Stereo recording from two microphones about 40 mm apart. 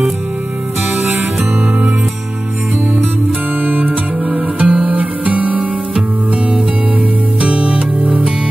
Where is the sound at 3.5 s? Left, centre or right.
Right.